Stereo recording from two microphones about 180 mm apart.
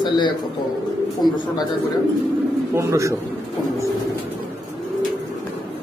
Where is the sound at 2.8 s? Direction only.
15° right (ahead or behind).